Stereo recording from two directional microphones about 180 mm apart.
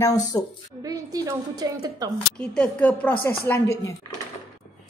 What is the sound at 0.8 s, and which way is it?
Speech, 20° right (ahead or behind).